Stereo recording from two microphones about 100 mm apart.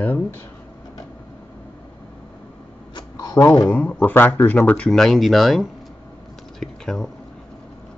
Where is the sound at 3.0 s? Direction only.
40° left (ahead or behind).